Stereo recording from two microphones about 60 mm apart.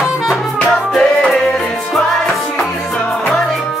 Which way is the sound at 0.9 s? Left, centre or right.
Centre.